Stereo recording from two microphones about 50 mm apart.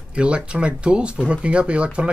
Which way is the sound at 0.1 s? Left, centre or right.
Right.